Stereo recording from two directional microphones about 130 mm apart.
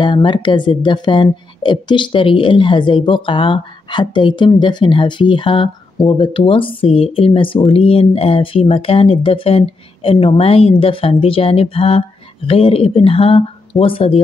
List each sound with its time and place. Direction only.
0.0 s a woman's voice: 40° left (ahead or behind)